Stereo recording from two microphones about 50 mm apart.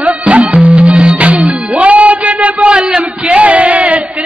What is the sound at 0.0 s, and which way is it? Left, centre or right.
Music, right.